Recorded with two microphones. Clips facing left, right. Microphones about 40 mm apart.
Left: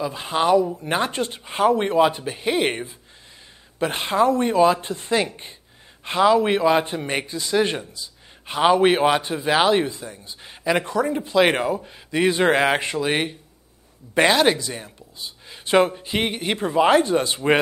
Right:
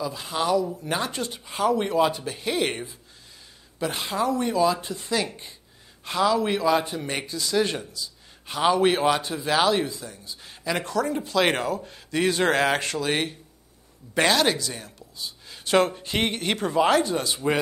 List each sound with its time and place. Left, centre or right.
0.0 s speech: left
3.8 s speech: left
15.9 s speech: centre
16.6 s speech: left